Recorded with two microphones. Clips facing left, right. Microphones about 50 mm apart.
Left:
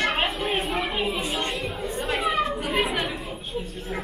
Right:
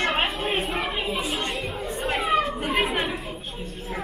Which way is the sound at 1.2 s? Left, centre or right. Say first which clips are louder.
Even; centre.